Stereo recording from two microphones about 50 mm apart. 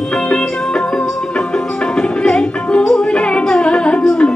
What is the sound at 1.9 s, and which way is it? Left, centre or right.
Music, centre.